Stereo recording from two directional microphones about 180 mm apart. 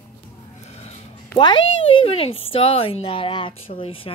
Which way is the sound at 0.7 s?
35° left (ahead or behind).